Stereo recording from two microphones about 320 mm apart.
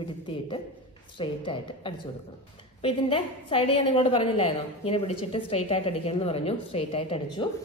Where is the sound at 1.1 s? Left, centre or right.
Centre.